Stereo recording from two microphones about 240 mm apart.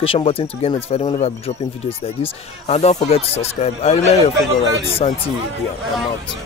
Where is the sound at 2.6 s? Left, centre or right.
Left.